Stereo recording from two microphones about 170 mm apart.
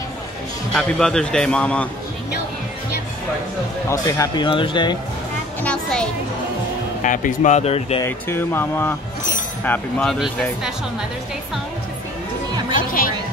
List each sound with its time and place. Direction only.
0.7 s a man's voice: 5° left (ahead or behind)
3.9 s speech: 25° left (ahead or behind)
5.6 s a man's voice: 5° left (ahead or behind)
7.0 s speech: 50° left (ahead or behind)
8.0 s a man's voice: 15° left (ahead or behind)
12.7 s speech: 55° left (ahead or behind)